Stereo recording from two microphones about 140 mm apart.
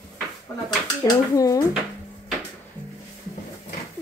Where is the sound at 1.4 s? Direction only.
25° left (ahead or behind).